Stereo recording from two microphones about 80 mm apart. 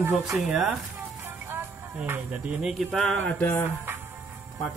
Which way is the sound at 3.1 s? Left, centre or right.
Centre.